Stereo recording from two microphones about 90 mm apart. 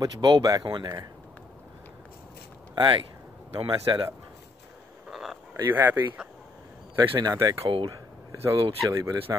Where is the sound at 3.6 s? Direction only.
70° right (ahead or behind).